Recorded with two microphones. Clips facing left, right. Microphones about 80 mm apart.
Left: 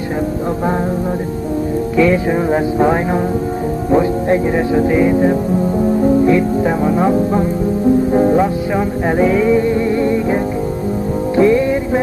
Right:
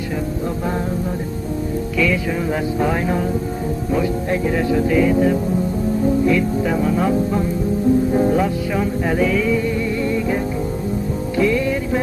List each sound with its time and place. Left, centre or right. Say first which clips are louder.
2.0 s speech: left 7 dB; left
8.1 s music: left 4 dB; left